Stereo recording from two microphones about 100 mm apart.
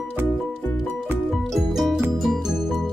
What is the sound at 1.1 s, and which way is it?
Music, 5° left (ahead or behind).